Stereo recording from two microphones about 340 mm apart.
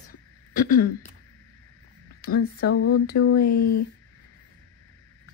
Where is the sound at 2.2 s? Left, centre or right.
Left.